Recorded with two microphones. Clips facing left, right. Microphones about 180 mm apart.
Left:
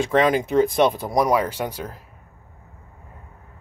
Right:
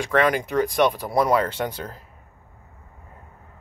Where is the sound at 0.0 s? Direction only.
20° left (ahead or behind).